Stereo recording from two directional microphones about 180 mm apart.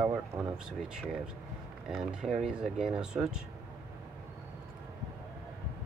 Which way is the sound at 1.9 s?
5° right (ahead or behind).